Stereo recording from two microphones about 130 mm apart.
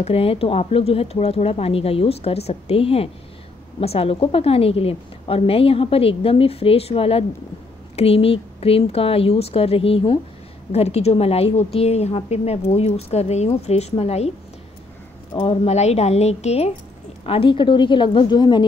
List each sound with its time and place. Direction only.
0.0 s a woman's voice: 50° left (ahead or behind)
15.3 s speech: 45° left (ahead or behind)
17.3 s a woman's voice: 40° left (ahead or behind)